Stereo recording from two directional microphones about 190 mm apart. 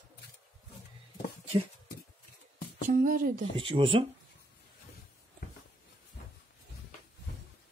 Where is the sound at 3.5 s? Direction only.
25° right (ahead or behind).